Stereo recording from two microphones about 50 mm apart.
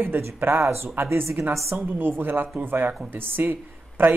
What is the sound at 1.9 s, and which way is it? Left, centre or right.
Speech, right.